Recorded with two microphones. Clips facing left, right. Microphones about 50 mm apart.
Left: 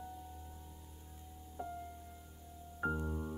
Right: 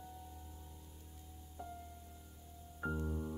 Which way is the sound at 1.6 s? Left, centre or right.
Left.